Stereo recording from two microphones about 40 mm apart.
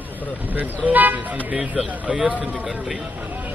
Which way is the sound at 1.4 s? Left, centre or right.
Right.